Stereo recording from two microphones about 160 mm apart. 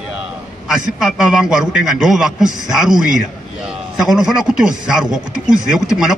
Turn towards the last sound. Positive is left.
turn(degrees=-5)  # may be behind; listen again after turning